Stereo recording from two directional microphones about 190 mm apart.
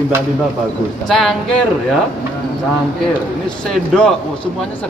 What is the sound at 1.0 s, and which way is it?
Speech, centre (ahead or behind).